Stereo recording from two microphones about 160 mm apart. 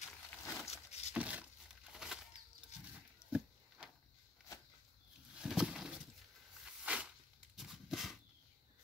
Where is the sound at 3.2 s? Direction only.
15° left (ahead or behind).